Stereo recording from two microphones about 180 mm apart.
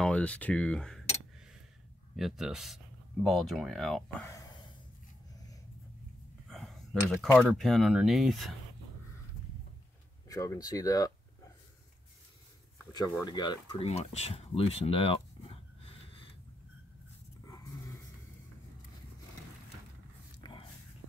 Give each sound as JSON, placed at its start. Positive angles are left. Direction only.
{"t": 0.0, "sound": "speech", "side_deg": 5}
{"t": 2.1, "sound": "speech", "side_deg": 0}
{"t": 6.5, "sound": "a sound", "side_deg": 0}
{"t": 7.3, "sound": "speech", "side_deg": 5}
{"t": 10.2, "sound": "speech", "side_deg": 20}
{"t": 13.2, "sound": "speech", "side_deg": 25}
{"t": 13.8, "sound": "a sound", "side_deg": 35}
{"t": 20.4, "sound": "dog", "side_deg": 25}